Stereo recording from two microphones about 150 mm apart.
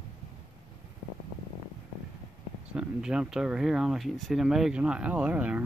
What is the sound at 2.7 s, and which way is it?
Speech, 5° right (ahead or behind).